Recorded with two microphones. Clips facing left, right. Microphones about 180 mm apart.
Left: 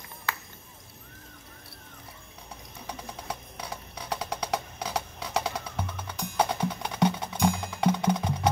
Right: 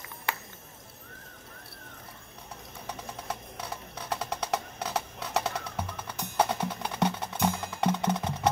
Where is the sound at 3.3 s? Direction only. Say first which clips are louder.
Even; 5° right (ahead or behind).